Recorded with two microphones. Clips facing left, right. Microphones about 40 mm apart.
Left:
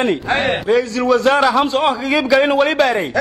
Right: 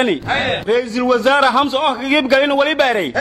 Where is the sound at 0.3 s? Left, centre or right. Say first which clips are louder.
Left 1 dB; centre.